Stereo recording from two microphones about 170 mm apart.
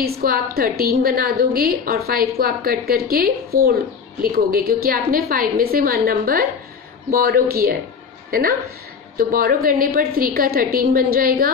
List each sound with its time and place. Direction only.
0.0 s a woman's voice: 60° right (ahead or behind)